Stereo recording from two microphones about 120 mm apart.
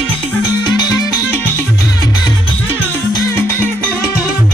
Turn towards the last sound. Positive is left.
turn(degrees=15)  # may be behind; listen again after turning